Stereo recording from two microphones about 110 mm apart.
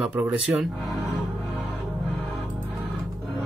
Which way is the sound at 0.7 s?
Centre (ahead or behind).